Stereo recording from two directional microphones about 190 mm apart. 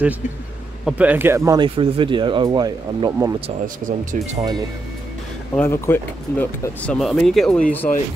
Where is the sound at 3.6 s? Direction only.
45° right (ahead or behind).